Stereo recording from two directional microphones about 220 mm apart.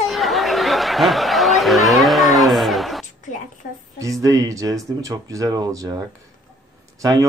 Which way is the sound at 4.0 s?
15° right (ahead or behind).